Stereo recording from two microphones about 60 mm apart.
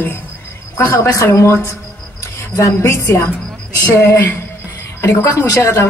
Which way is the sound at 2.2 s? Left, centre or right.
Left.